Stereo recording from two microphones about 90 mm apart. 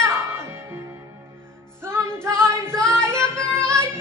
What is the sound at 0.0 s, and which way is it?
Music, 35° right (ahead or behind).